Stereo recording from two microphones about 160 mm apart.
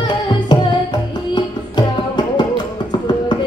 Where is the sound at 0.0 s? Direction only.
30° left (ahead or behind).